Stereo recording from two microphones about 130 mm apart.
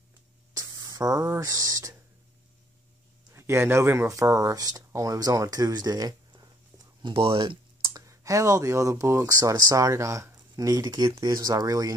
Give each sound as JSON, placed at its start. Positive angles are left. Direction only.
{"t": 0.6, "sound": "speech", "side_deg": -25}
{"t": 3.3, "sound": "speech", "side_deg": -20}
{"t": 7.9, "sound": "speech", "side_deg": -25}